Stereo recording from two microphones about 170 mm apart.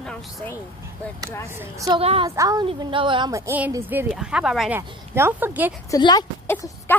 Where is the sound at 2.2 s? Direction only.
20° right (ahead or behind).